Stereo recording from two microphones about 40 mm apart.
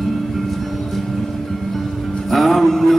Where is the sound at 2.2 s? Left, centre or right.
Centre.